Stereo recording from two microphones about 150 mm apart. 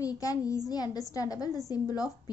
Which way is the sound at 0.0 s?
20° left (ahead or behind).